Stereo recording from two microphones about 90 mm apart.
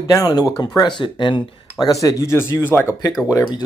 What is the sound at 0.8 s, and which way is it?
Speech, 60° left (ahead or behind).